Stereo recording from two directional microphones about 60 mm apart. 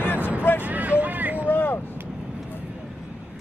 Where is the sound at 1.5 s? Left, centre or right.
Left.